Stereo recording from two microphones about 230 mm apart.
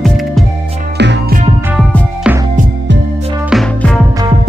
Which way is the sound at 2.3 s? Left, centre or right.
Centre.